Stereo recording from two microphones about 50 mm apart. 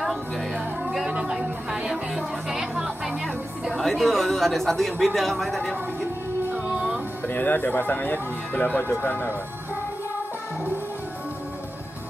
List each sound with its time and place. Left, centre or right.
1.3 s music: centre
3.7 s speech: centre
6.5 s music: right
7.2 s speech: left
8.5 s speech: left
8.8 s speech: left